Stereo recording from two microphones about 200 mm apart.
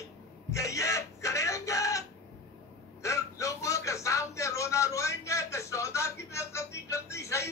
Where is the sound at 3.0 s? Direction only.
15° left (ahead or behind).